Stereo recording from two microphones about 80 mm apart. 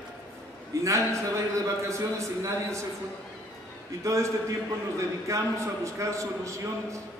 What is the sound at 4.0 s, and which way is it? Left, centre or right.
Speech, right.